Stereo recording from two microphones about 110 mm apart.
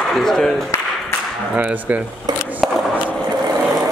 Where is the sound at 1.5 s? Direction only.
15° right (ahead or behind).